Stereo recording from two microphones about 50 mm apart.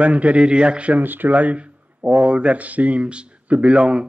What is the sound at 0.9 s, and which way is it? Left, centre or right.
Speech, right.